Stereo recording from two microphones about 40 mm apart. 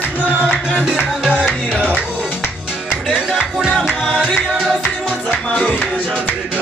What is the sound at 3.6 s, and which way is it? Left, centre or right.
Music, right.